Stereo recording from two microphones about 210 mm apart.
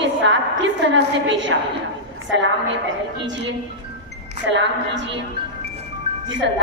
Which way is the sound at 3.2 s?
60° right (ahead or behind).